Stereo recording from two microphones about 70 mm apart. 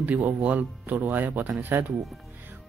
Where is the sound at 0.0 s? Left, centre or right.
Right.